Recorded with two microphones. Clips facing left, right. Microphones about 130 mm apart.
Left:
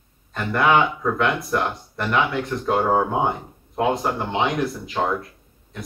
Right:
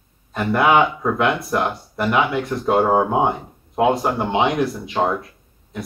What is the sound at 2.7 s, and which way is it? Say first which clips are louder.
Speech: right 3 dB; 25° right (ahead or behind).